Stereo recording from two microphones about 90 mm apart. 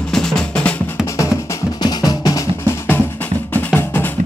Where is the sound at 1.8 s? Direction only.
50° left (ahead or behind).